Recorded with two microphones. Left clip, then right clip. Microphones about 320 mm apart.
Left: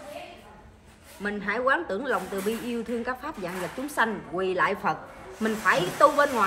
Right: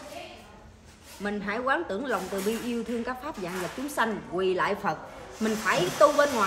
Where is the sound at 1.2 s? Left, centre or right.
Centre.